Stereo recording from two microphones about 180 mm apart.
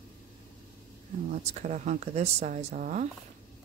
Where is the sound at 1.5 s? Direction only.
40° right (ahead or behind).